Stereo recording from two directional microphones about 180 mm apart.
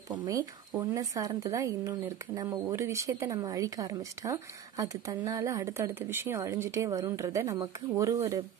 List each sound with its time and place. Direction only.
0.1 s a woman's voice: 20° right (ahead or behind)